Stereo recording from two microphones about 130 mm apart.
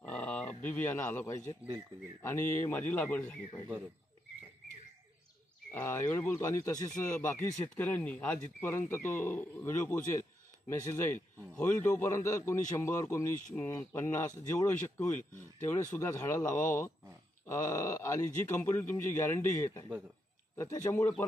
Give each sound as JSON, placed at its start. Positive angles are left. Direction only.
{"t": 0.0, "sound": "a sound", "side_deg": 10}
{"t": 2.2, "sound": "a man's voice", "side_deg": 20}
{"t": 5.7, "sound": "a man's voice", "side_deg": 15}
{"t": 7.8, "sound": "a man's voice", "side_deg": 10}